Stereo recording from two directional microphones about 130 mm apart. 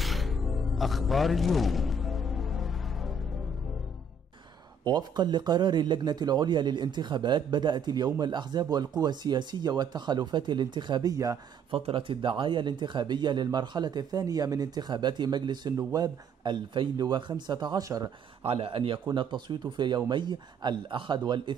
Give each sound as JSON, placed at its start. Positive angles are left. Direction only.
{"t": 0.0, "sound": "music", "side_deg": 0}
{"t": 4.8, "sound": "speech", "side_deg": -35}
{"t": 11.7, "sound": "speech", "side_deg": -45}
{"t": 18.4, "sound": "a man's voice", "side_deg": -50}